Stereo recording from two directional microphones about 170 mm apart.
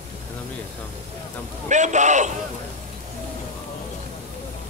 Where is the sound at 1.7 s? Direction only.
45° right (ahead or behind).